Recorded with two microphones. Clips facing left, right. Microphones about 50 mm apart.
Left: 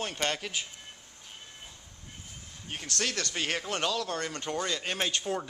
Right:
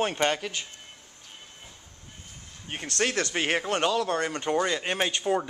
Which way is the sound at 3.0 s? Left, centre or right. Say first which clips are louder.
Right 7 dB; right.